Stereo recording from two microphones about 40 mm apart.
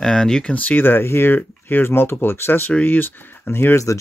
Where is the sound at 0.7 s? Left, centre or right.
Left.